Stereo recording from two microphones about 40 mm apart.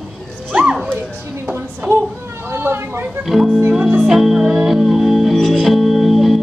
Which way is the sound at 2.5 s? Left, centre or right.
Right.